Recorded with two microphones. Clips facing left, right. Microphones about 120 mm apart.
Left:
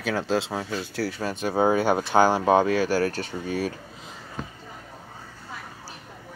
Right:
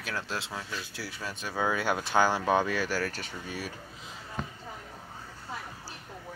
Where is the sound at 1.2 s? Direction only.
60° left (ahead or behind).